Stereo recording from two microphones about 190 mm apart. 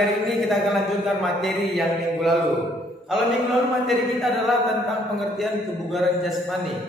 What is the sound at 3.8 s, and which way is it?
A man's voice, centre (ahead or behind).